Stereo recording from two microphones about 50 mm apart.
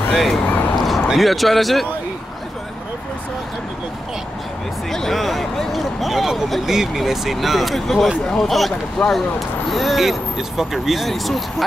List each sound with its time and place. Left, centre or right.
0.1 s speech: centre
0.5 s a sound: left
0.7 s a sound: centre
1.1 s speech: centre
4.9 s speech: centre
9.0 s speech: centre
9.7 s speech: centre